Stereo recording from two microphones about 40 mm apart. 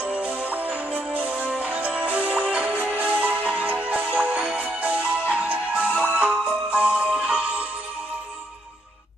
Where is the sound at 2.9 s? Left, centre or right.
Right.